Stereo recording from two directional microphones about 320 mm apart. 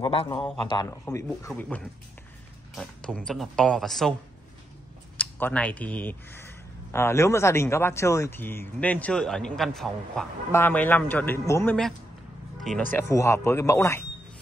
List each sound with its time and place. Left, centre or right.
0.0 s speech: centre
5.1 s speech: centre
12.5 s music: centre
12.9 s speech: centre